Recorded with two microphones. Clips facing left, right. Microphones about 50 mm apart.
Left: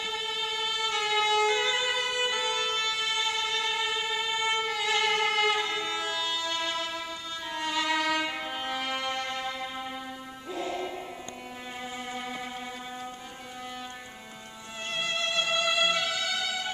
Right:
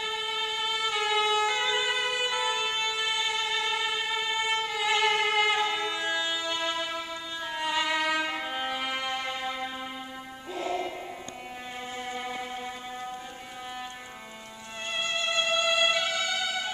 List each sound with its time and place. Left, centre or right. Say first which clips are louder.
0.0 s violin: right 1 dB; centre
10.5 s music: right 2 dB; centre
12.1 s music: right 3 dB; centre
15.0 s music: right 1 dB; centre